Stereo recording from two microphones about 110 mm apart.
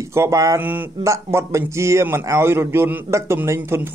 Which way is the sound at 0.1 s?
30° right (ahead or behind).